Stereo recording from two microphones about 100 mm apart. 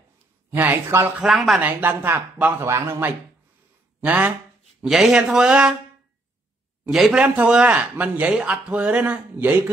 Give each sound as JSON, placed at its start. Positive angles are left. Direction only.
{"t": 0.5, "sound": "speech", "side_deg": -20}
{"t": 1.2, "sound": "speech", "side_deg": 0}
{"t": 1.6, "sound": "speech", "side_deg": -20}
{"t": 4.8, "sound": "speech", "side_deg": -5}
{"t": 6.9, "sound": "speech", "side_deg": -5}